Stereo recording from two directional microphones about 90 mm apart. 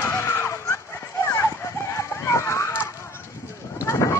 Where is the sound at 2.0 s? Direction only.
35° left (ahead or behind).